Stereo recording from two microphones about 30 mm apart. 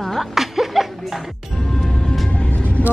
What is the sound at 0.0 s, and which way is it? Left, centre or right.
Chuckle, centre.